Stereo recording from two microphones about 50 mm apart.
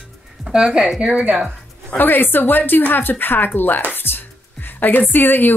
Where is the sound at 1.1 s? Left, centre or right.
Right.